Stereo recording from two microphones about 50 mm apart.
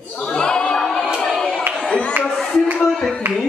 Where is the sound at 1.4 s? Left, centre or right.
Centre.